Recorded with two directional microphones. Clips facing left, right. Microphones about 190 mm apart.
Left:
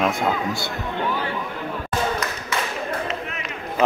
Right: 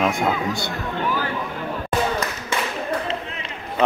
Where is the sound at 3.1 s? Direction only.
30° right (ahead or behind).